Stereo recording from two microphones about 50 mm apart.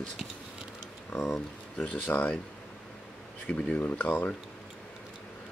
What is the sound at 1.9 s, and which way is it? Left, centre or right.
Speech, left.